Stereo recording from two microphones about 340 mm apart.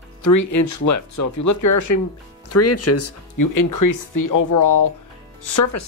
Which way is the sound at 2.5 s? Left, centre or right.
Left.